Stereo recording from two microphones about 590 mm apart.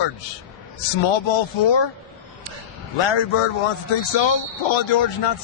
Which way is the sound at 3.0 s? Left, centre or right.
Left.